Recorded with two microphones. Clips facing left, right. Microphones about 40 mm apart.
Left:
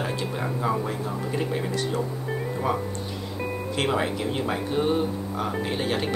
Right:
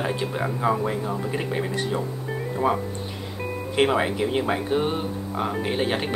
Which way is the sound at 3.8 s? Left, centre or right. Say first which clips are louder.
Right 5 dB; centre.